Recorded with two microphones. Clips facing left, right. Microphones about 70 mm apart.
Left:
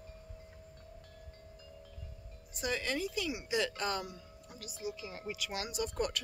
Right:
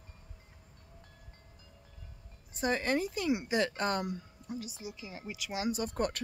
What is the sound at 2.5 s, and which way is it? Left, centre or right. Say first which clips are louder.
Speech: right 5 dB; right.